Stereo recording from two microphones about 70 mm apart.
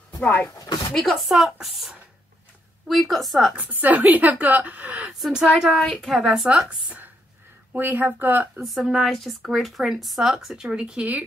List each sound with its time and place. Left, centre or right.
0.6 s a sound: left
0.9 s a woman's voice: centre
3.5 s a woman's voice: right
5.2 s a woman's voice: centre; by 8.5 s right
8.6 s a woman's voice: centre